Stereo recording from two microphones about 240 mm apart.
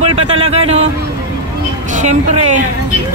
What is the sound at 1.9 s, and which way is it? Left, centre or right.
Speech, right.